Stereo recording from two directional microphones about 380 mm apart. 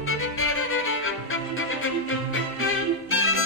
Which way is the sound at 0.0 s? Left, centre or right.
Left.